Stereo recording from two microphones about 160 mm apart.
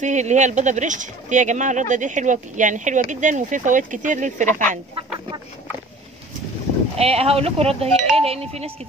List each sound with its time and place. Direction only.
0.0 s speech: 50° right (ahead or behind)
7.0 s speech: 40° right (ahead or behind)